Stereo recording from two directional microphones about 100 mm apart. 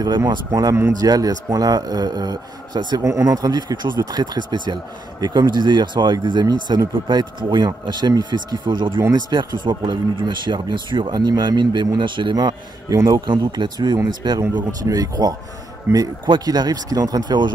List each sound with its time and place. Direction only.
0.5 s speech: 35° right (ahead or behind)
3.0 s speech: 30° right (ahead or behind)
15.9 s speech: 25° right (ahead or behind)
16.3 s speech: 45° right (ahead or behind)